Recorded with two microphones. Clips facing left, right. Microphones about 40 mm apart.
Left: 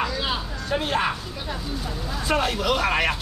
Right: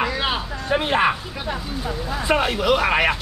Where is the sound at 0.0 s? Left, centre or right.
Right.